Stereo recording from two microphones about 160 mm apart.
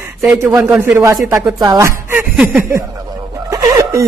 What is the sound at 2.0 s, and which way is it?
Snicker, 15° right (ahead or behind).